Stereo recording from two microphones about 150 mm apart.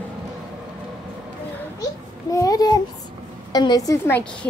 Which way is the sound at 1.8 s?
20° left (ahead or behind).